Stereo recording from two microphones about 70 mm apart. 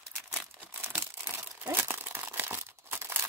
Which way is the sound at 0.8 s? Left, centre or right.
Right.